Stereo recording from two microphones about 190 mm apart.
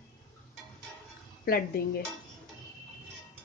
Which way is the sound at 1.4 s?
55° left (ahead or behind).